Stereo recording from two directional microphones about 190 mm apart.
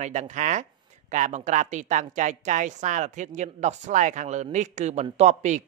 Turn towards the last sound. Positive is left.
turn(degrees=-40)  # may be behind; listen again after turning